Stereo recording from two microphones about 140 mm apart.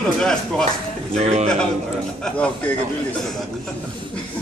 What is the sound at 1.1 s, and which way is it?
Speech, 50° right (ahead or behind).